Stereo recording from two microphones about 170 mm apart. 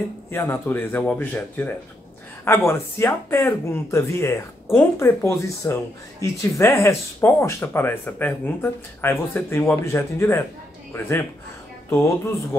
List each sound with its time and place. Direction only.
0.3 s speech: 15° left (ahead or behind)